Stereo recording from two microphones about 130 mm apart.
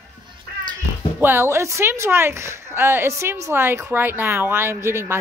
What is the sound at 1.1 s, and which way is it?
Music, 15° right (ahead or behind).